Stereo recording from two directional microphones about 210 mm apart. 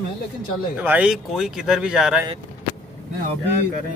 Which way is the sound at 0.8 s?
5° right (ahead or behind).